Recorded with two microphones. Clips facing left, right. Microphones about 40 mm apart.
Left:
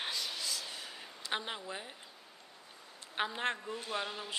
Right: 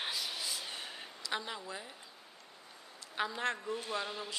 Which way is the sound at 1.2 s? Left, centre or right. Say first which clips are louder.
Left 1 dB; left.